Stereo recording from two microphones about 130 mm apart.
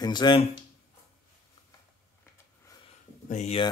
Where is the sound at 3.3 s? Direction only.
60° left (ahead or behind).